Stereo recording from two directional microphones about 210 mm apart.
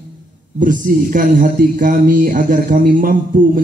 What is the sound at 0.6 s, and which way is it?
Speech, 40° right (ahead or behind).